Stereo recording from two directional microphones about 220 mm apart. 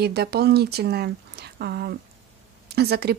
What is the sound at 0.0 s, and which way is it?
Speech, 45° right (ahead or behind).